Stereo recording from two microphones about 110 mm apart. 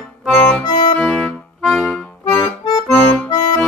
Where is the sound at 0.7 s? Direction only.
40° left (ahead or behind).